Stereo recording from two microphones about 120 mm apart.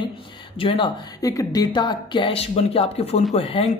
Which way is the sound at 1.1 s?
30° left (ahead or behind).